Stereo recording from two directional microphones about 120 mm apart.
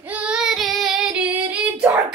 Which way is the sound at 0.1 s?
10° right (ahead or behind).